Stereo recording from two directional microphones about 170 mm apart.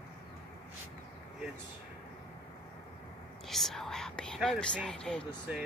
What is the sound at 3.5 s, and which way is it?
Speech, centre (ahead or behind).